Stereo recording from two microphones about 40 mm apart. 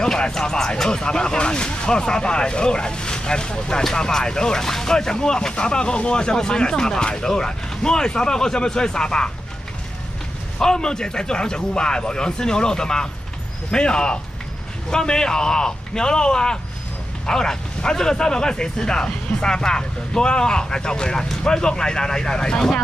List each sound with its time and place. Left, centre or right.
0.0 s speech: centre
10.6 s speech: centre